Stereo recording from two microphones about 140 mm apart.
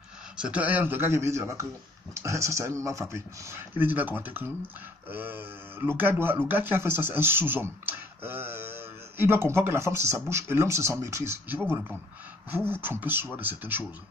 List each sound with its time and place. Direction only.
0.4 s speech: 10° right (ahead or behind)